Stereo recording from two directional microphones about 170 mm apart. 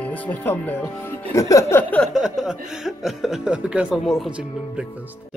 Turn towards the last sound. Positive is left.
turn(degrees=-5)  # may be behind; listen again after turning